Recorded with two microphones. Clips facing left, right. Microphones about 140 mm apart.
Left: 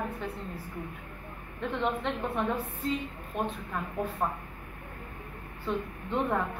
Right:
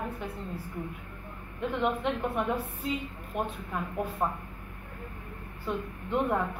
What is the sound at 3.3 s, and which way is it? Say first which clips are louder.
Speech: even; 5° right (ahead or behind).